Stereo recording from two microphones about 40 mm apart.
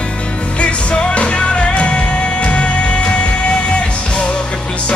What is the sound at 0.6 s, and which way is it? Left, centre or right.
Music, left.